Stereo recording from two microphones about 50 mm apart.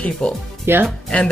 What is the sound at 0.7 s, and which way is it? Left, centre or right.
Speech, right.